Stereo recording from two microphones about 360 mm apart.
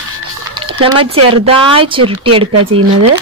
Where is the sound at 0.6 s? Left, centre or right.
Centre.